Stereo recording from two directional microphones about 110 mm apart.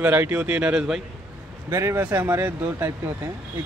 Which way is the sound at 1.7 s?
25° right (ahead or behind).